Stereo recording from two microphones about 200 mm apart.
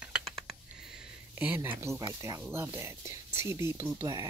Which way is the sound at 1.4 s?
10° right (ahead or behind).